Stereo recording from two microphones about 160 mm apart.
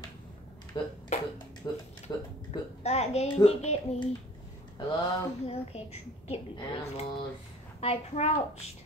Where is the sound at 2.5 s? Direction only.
40° left (ahead or behind).